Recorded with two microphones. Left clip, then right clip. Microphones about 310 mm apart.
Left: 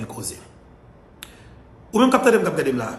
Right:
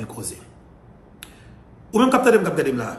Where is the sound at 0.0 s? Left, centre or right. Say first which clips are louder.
Left 1 dB; centre.